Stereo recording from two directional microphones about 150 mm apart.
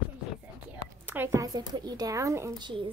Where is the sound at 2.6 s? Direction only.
30° right (ahead or behind).